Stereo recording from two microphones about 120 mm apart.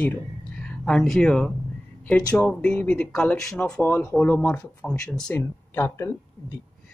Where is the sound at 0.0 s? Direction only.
10° left (ahead or behind).